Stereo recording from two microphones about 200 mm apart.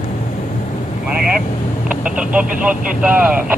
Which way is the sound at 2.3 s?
5° right (ahead or behind).